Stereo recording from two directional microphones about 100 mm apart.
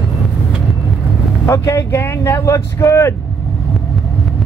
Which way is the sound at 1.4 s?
30° left (ahead or behind).